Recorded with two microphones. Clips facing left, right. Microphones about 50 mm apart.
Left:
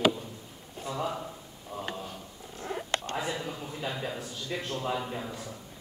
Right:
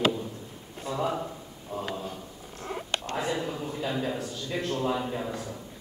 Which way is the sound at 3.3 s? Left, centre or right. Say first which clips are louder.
Right 4 dB; centre.